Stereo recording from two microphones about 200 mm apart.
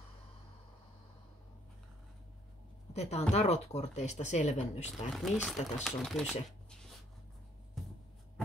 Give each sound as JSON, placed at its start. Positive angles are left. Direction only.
{"t": 2.9, "sound": "speech", "side_deg": 30}
{"t": 5.1, "sound": "speech", "side_deg": 0}